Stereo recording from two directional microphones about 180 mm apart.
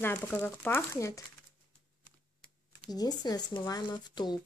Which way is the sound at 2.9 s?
20° left (ahead or behind).